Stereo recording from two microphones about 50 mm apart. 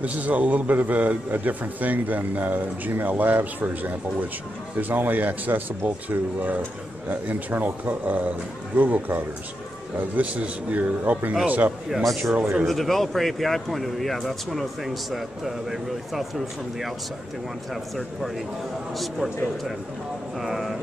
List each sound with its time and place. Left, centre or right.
0.0 s a man's voice: right
11.9 s speech: centre
20.3 s speech: centre